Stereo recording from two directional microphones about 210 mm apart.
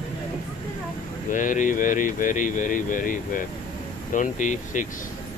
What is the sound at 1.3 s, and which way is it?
Speech, 40° left (ahead or behind).